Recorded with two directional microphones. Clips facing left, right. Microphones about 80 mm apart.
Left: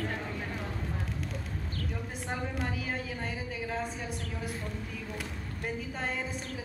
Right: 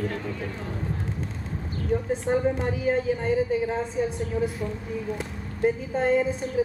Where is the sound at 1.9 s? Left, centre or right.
Right.